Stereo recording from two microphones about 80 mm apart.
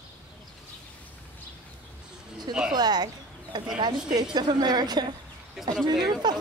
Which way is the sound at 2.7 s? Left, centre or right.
Right.